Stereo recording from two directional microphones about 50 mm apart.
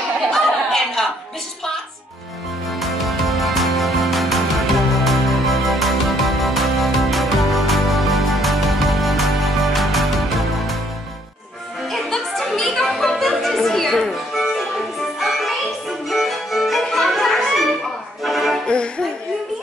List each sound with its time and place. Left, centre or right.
0.3 s a sound: centre
2.8 s music: centre
11.9 s music: centre
18.7 s music: centre